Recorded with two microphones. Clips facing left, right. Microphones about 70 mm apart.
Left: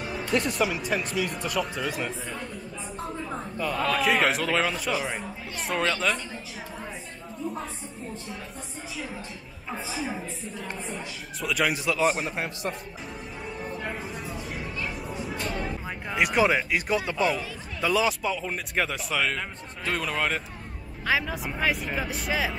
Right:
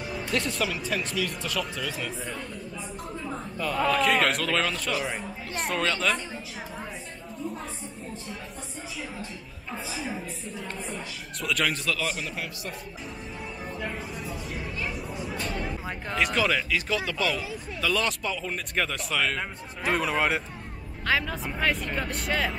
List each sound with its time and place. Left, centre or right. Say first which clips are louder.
0.3 s speech: left 3 dB; centre
3.3 s a sound: right 1 dB; centre
3.8 s a man's voice: right 1 dB; centre
10.7 s speech: left 1 dB; centre
12.3 s a man's voice: left 5 dB; left
13.8 s a sound: left 1 dB; centre
15.4 s music: left 1 dB; centre
16.7 s a man's voice: left 2 dB; centre
21.0 s speech: even; centre